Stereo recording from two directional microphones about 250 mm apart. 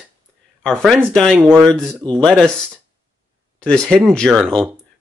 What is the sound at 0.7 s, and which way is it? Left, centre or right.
Speech, centre.